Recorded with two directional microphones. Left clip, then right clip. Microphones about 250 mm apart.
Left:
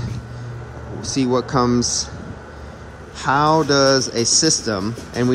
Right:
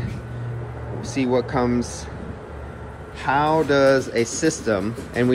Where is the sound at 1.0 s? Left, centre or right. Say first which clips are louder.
Left 2 dB; centre.